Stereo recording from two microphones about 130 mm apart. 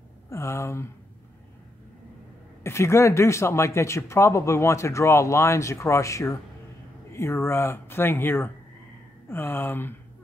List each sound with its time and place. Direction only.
0.3 s speech: 20° left (ahead or behind)
2.6 s speech: 20° left (ahead or behind)